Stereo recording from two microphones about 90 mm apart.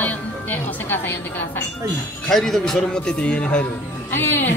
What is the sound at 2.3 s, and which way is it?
A woman's voice, 5° left (ahead or behind).